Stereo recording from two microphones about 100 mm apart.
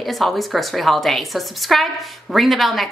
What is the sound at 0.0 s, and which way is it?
A woman's voice, centre (ahead or behind).